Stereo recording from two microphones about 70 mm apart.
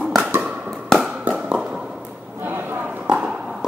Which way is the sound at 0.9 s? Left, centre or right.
Centre.